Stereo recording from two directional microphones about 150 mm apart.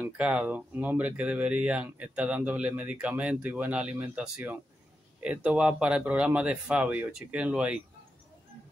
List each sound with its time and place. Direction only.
0.0 s speech: 10° right (ahead or behind)